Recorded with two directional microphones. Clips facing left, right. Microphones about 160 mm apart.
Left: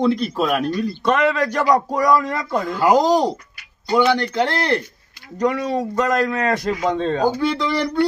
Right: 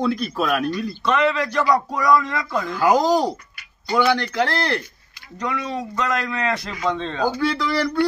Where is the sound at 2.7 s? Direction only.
20° left (ahead or behind).